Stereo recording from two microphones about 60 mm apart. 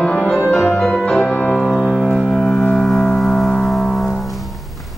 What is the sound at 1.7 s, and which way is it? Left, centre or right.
Music, centre.